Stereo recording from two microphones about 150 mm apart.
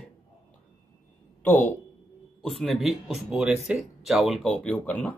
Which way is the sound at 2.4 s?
Centre (ahead or behind).